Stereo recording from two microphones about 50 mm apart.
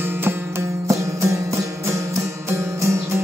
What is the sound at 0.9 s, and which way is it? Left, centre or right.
Music, right.